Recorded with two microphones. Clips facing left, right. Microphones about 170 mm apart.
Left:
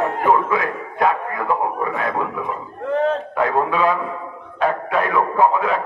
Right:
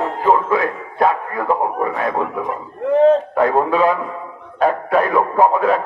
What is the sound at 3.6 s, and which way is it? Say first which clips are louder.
A man's voice: right 3 dB; 35° right (ahead or behind).